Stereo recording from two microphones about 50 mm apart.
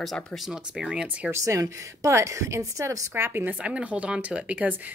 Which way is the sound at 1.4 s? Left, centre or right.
Right.